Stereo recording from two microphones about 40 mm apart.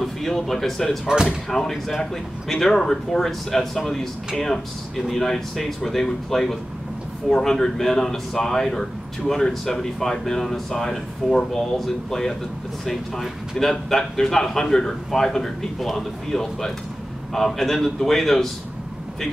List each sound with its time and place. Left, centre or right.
0.0 s speech: centre
1.0 s speech: centre
1.5 s speech: centre
13.6 s speech: centre